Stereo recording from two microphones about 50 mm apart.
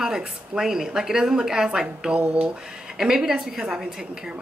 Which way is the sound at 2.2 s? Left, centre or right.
Right.